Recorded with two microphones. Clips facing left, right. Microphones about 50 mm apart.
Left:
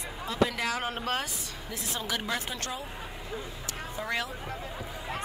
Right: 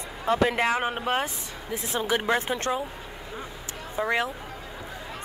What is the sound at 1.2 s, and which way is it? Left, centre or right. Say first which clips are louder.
Speech: right 5 dB; right.